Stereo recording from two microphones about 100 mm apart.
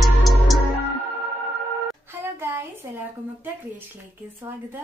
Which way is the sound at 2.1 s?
25° right (ahead or behind).